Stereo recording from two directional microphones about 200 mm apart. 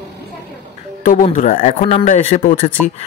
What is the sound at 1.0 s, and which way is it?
Speech, 40° left (ahead or behind).